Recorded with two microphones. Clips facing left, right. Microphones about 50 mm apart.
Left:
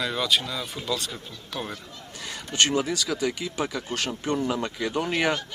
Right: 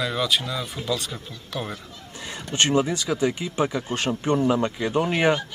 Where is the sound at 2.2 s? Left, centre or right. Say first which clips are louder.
Right 1 dB; right.